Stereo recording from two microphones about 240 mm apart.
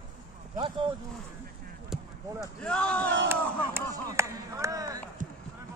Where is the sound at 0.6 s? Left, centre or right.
Centre.